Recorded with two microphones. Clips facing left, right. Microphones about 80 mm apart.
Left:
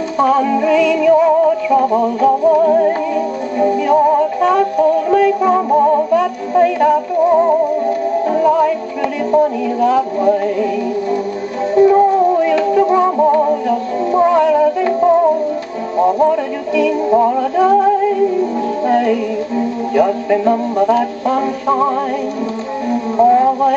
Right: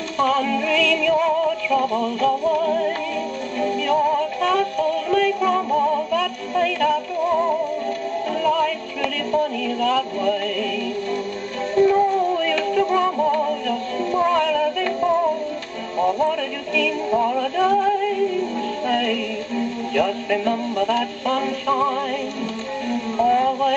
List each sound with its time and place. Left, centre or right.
0.2 s music: centre
16.0 s music: centre